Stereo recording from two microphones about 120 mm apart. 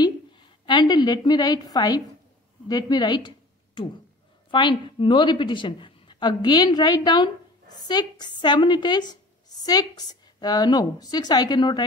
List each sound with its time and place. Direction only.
0.0 s a woman's voice: 40° left (ahead or behind)